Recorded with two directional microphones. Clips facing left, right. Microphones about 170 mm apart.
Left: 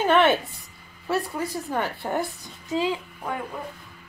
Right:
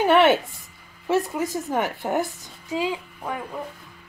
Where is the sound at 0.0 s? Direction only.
15° right (ahead or behind).